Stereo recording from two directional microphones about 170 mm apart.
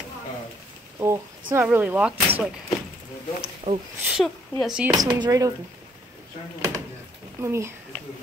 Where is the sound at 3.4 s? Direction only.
40° right (ahead or behind).